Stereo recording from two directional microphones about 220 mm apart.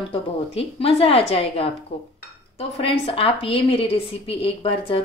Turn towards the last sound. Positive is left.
turn(degrees=25)  # may be behind; listen again after turning